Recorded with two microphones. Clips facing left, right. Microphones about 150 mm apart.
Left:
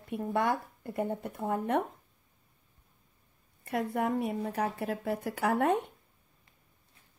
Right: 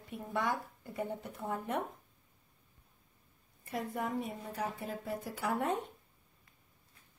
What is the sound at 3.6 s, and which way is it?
Speech, 65° left (ahead or behind).